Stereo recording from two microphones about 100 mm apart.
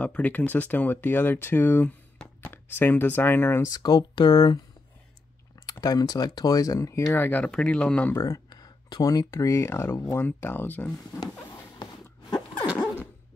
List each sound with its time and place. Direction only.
0.0 s speech: 15° left (ahead or behind)
3.7 s speech: 45° left (ahead or behind)
5.7 s speech: 35° left (ahead or behind)
7.1 s speech: 15° left (ahead or behind)
8.1 s a sound: 35° left (ahead or behind)
9.3 s speech: 30° left (ahead or behind)
10.1 s speech: 20° left (ahead or behind)
12.7 s a sound: 20° left (ahead or behind)